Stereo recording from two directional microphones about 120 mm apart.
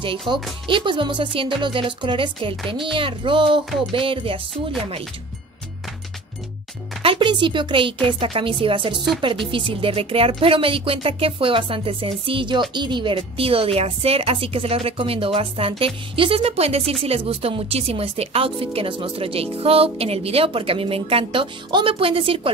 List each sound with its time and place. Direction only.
0.3 s a woman's voice: 45° right (ahead or behind)
7.0 s a woman's voice: 45° right (ahead or behind)